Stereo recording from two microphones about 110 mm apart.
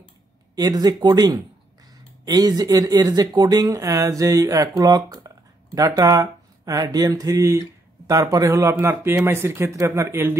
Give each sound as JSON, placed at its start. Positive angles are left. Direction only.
{"t": 0.6, "sound": "speech", "side_deg": -35}